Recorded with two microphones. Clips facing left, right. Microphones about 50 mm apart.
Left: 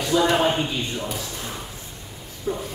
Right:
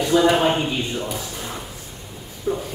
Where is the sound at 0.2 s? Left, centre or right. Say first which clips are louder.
Right 1 dB; centre.